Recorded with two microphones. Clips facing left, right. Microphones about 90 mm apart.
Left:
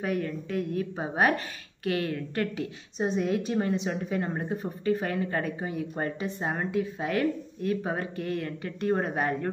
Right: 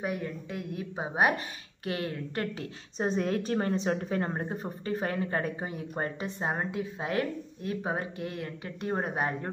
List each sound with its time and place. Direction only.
0.0 s a woman's voice: 20° right (ahead or behind); by 4.3 s 45° right (ahead or behind)
4.3 s speech: 30° right (ahead or behind)